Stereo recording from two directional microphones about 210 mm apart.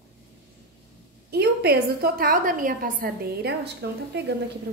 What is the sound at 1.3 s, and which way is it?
A woman's voice, 50° right (ahead or behind).